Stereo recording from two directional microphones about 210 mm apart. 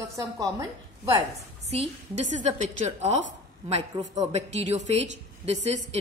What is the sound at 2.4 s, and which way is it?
Speech, 35° right (ahead or behind).